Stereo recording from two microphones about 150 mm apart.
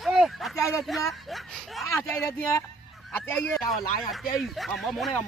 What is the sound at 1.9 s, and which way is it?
Speech, 15° left (ahead or behind).